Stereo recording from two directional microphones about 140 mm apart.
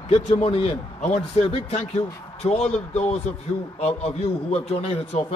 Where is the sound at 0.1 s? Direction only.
40° left (ahead or behind).